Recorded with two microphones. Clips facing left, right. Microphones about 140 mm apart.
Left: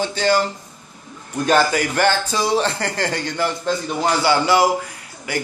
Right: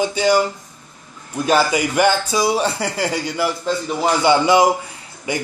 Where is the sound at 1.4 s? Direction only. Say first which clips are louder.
Even; 10° right (ahead or behind).